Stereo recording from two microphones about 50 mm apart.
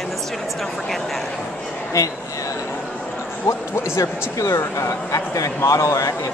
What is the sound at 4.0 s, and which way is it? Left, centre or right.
Speech, left.